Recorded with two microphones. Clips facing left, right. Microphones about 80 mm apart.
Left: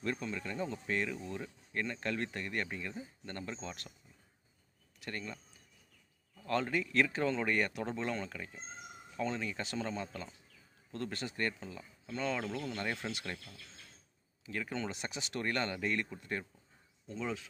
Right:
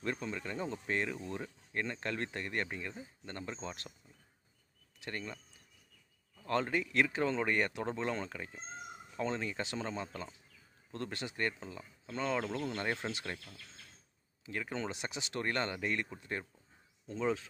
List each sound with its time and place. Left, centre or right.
0.0 s speech: centre
5.0 s speech: right
6.4 s speech: right
14.7 s speech: right